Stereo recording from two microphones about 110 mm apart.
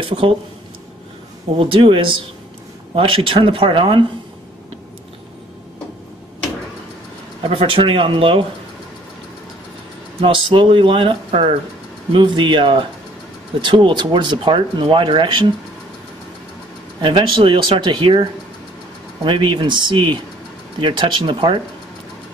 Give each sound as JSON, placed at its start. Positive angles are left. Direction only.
{"t": 1.6, "sound": "speech", "side_deg": -50}
{"t": 7.4, "sound": "speech", "side_deg": -55}
{"t": 10.2, "sound": "speech", "side_deg": -50}
{"t": 17.0, "sound": "speech", "side_deg": -50}